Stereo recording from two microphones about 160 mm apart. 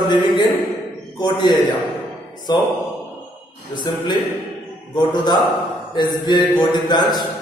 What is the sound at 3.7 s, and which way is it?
Speech, 25° left (ahead or behind).